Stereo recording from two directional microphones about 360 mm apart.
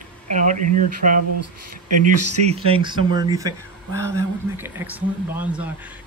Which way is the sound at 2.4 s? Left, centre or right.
Centre.